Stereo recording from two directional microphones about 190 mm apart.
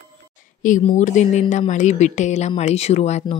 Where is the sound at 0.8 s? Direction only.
40° left (ahead or behind).